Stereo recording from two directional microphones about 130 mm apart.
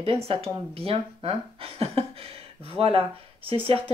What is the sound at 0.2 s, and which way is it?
Speech, 50° right (ahead or behind).